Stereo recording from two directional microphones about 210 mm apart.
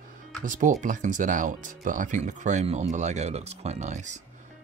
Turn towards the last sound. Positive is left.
turn(degrees=-35)  # may be behind; listen again after turning